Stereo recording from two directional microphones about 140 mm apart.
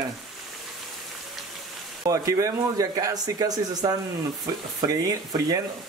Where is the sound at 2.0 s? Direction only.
25° right (ahead or behind).